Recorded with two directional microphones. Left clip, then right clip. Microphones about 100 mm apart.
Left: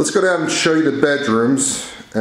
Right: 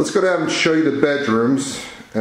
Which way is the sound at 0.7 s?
10° left (ahead or behind).